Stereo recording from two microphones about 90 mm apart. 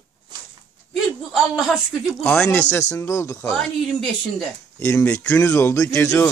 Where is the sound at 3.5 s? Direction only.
5° left (ahead or behind).